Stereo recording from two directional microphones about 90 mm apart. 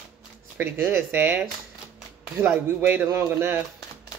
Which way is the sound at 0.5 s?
25° right (ahead or behind).